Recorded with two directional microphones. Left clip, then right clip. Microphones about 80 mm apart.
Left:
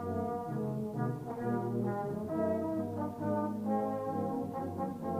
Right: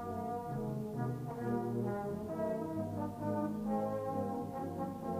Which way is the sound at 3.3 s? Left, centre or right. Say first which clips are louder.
Left 3 dB; left.